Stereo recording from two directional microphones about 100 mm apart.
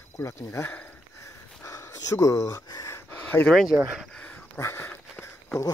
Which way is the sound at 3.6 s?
10° right (ahead or behind).